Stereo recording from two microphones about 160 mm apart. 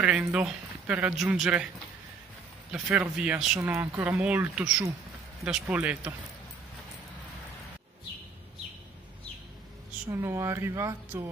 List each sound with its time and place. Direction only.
0.2 s speech: 5° right (ahead or behind)
2.7 s speech: 5° right (ahead or behind)
10.0 s speech: 15° right (ahead or behind)